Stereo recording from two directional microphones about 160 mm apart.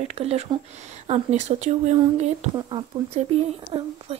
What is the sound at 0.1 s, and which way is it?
Speech, 40° right (ahead or behind).